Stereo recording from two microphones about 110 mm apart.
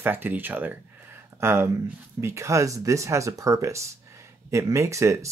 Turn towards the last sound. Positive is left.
turn(degrees=-25)  # may be behind; listen again after turning